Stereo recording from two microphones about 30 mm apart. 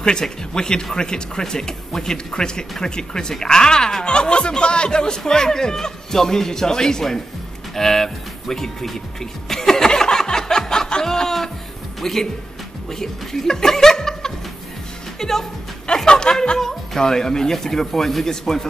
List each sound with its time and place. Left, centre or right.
0.0 s speech: left
4.1 s speech: left; by 9.8 s centre
9.8 s a sound: left
12.0 s speech: centre
16.1 s speech: left